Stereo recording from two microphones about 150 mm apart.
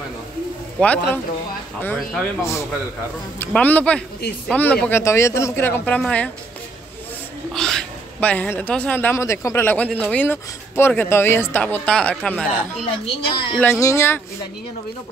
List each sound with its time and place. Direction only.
0.7 s a man's voice: 10° left (ahead or behind)
7.5 s a man's voice: 5° left (ahead or behind)
12.8 s a woman's voice: 35° left (ahead or behind)
13.6 s a man's voice: 15° left (ahead or behind)